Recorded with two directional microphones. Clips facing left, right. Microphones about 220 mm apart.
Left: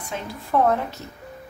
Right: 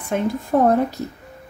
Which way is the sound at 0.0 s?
55° right (ahead or behind).